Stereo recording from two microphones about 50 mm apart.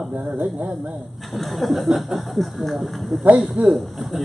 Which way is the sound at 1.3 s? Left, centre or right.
Centre.